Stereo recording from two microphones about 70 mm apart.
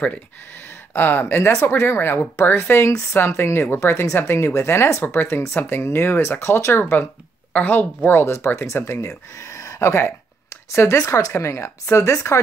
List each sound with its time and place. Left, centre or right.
0.0 s a woman's voice: left